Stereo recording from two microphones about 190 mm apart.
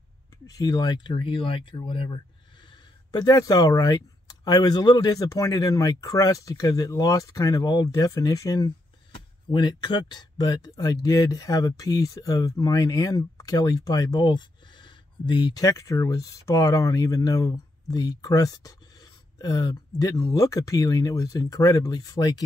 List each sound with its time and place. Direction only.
0.6 s speech: 20° left (ahead or behind)